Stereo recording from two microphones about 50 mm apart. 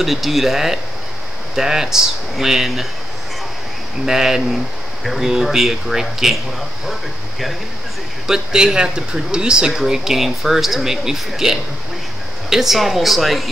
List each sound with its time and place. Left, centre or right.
0.0 s speech: centre
4.0 s speech: centre
5.0 s speech: centre
8.3 s speech: centre